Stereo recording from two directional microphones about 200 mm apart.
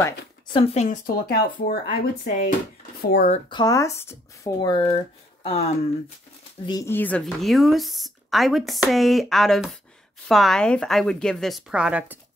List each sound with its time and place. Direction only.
0.0 s speech: 25° left (ahead or behind)
0.8 s speech: 45° left (ahead or behind)
3.1 s speech: 45° left (ahead or behind)
3.4 s speech: 20° left (ahead or behind)
6.6 s speech: 20° left (ahead or behind); by 12.2 s 5° right (ahead or behind)